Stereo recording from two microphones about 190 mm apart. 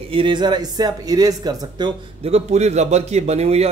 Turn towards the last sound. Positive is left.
turn(degrees=-35)  # may be behind; listen again after turning